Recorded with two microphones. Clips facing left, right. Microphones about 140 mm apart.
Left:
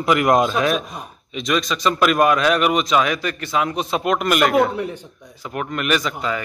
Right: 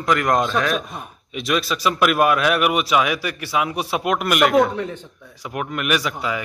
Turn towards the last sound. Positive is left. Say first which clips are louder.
# left 1 dB
turn(degrees=-10)  # may be behind; listen again after turning